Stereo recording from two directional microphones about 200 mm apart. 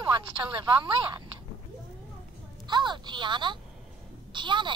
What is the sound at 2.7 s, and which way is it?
A child's voice, 20° right (ahead or behind).